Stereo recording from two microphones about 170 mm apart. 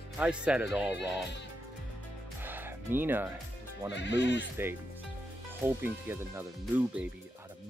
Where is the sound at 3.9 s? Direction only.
90° left.